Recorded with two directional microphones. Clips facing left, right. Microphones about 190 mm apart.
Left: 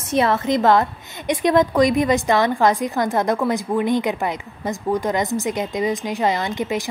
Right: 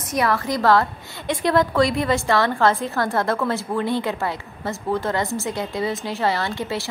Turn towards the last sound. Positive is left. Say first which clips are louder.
# left 3 dB
turn(degrees=15)  # may be behind; listen again after turning